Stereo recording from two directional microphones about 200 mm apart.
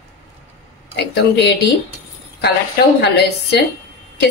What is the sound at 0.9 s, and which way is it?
Speech, 55° left (ahead or behind).